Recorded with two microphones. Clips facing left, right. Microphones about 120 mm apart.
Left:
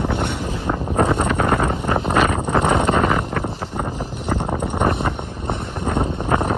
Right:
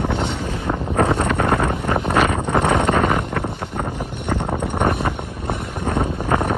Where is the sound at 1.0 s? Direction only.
Centre (ahead or behind).